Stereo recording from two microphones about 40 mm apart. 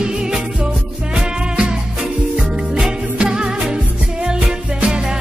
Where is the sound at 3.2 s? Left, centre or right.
Right.